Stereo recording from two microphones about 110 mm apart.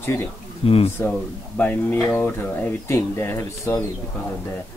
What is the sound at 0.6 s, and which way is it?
Speech, 60° left (ahead or behind).